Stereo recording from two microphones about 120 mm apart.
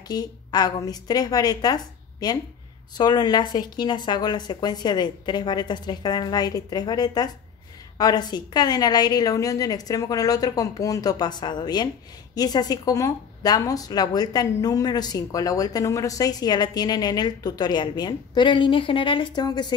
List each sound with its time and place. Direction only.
0.1 s a woman's voice: 35° left (ahead or behind)